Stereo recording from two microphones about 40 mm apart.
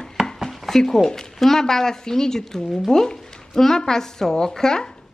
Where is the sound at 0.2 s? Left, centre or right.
Centre.